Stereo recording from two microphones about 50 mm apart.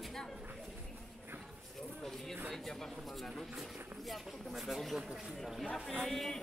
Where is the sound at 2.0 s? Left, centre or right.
Centre.